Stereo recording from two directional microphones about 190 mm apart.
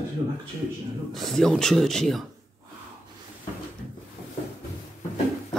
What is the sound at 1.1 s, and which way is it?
A man's voice, centre (ahead or behind).